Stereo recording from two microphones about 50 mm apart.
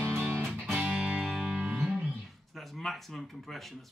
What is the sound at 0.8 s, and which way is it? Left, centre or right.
Music, right.